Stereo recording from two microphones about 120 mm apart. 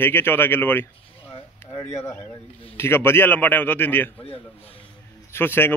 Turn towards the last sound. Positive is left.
turn(degrees=20)  # may be behind; listen again after turning